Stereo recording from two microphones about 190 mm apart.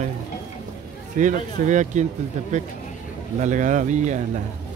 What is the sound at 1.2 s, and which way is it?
Speech, 40° right (ahead or behind).